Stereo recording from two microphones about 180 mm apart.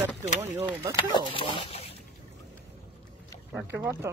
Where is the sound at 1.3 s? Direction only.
30° left (ahead or behind).